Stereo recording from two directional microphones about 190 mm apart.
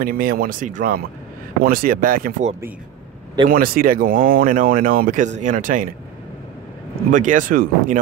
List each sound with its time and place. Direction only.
0.0 s speech: 50° right (ahead or behind)
3.4 s speech: 50° right (ahead or behind)
7.1 s speech: 45° right (ahead or behind)